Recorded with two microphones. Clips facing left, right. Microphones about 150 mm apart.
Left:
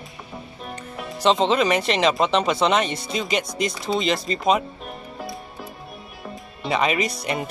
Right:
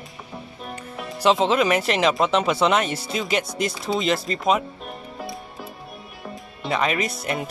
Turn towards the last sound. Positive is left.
turn(degrees=-5)  # may be behind; listen again after turning